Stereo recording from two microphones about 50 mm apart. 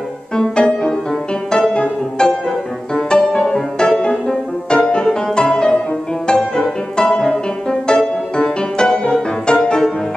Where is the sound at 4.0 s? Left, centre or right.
Centre.